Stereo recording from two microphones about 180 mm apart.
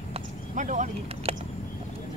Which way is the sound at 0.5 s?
45° right (ahead or behind).